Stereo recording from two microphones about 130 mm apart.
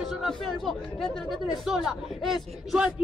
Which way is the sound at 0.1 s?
Centre (ahead or behind).